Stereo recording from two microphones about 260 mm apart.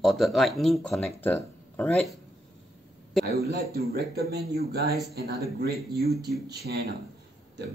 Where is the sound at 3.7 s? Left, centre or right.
Right.